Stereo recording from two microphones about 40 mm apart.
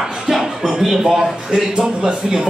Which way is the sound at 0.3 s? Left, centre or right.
Centre.